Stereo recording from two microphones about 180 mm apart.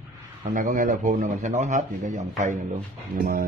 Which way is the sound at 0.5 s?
50° right (ahead or behind).